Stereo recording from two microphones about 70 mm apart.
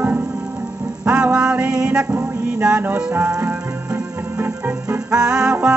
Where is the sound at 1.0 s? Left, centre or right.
Centre.